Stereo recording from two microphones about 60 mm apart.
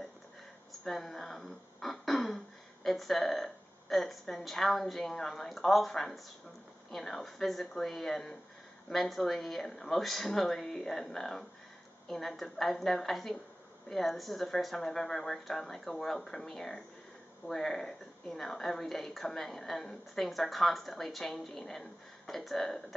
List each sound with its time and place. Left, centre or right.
0.7 s a woman's voice: centre